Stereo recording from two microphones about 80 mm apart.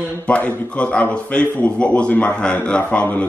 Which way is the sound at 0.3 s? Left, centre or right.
Centre.